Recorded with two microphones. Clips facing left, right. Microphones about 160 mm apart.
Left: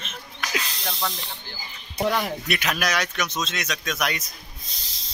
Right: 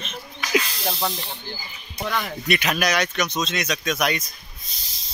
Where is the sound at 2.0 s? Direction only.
10° left (ahead or behind).